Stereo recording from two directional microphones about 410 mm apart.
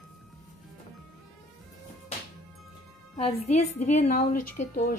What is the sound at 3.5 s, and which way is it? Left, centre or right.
A woman's voice, centre.